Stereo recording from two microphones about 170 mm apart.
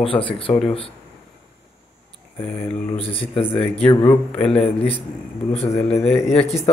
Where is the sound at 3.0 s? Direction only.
35° left (ahead or behind).